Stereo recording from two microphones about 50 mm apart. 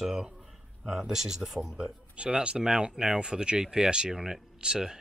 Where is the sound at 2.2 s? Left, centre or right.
Right.